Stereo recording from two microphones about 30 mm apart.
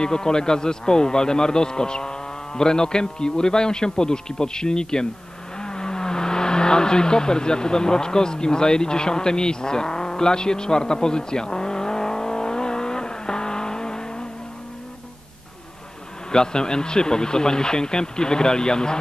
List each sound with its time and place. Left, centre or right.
0.0 s a man's voice: left
5.6 s vehicle: left
16.3 s a man's voice: left